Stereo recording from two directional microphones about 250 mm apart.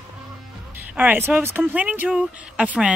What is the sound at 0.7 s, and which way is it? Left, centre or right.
Speech, centre.